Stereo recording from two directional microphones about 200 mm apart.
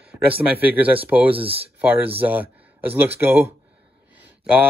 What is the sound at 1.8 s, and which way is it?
Speech, 10° right (ahead or behind).